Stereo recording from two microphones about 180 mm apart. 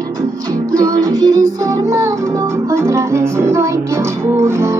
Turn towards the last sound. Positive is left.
turn(degrees=-15)  # may be behind; listen again after turning